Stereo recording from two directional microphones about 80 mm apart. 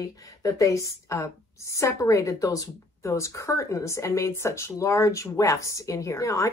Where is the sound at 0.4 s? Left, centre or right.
Left.